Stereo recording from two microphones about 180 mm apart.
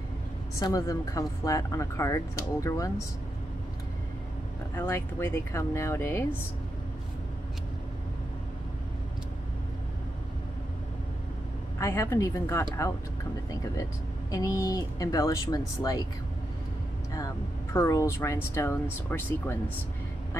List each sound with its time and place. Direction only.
0.6 s speech: 20° left (ahead or behind)
4.7 s speech: 15° left (ahead or behind)
11.8 s speech: 15° left (ahead or behind)
14.3 s speech: 20° left (ahead or behind)
17.7 s speech: 15° left (ahead or behind)